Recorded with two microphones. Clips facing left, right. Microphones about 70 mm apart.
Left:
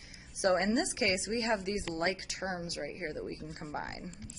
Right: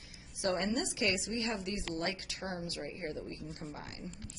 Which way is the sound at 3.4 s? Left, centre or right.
Left.